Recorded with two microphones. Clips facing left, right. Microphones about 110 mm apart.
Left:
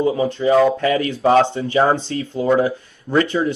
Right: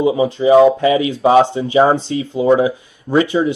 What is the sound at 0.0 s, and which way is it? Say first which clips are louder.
Speech: right 3 dB; 10° right (ahead or behind).